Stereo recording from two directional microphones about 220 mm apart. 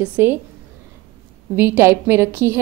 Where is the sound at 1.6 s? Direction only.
10° right (ahead or behind).